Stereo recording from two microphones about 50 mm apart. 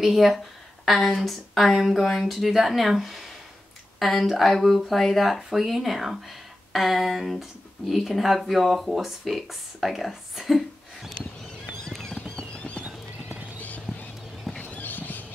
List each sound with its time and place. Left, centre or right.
0.0 s speech: centre
11.8 s clip-clop: centre
12.2 s clip-clop: left
14.6 s a sound: left